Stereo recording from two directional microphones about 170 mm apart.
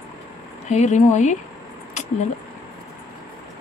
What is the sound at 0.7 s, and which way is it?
Speech, 45° left (ahead or behind).